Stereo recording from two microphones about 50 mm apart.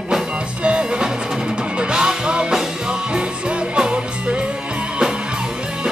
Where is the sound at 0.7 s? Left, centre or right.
Centre.